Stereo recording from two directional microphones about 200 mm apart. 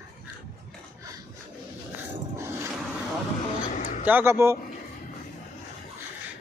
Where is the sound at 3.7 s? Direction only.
40° left (ahead or behind).